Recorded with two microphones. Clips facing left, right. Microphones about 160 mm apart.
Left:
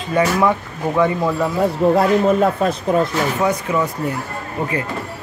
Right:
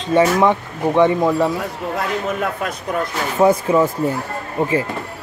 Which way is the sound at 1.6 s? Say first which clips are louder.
Left 9 dB; 30° left (ahead or behind).